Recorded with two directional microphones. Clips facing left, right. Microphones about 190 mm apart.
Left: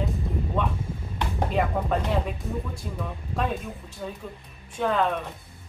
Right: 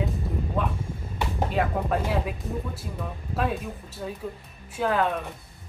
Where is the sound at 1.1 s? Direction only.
Centre (ahead or behind).